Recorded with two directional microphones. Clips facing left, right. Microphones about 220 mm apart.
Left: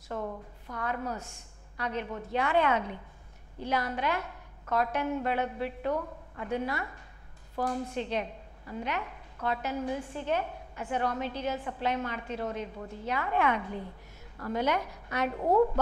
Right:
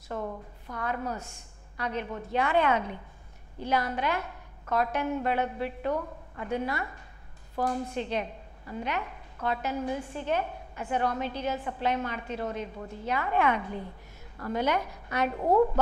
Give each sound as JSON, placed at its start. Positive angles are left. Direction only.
{"t": 0.1, "sound": "a woman's voice", "side_deg": -25}